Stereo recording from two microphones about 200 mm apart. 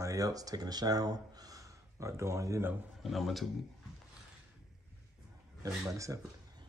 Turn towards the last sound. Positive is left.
turn(degrees=-15)  # may be behind; listen again after turning